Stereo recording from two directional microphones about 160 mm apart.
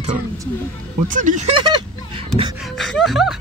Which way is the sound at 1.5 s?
30° right (ahead or behind).